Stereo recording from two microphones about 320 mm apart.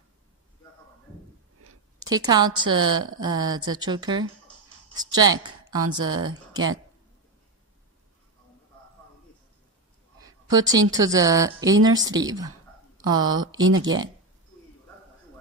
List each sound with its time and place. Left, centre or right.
2.0 s a woman's voice: centre
10.2 s a woman's voice: centre
13.6 s speech: right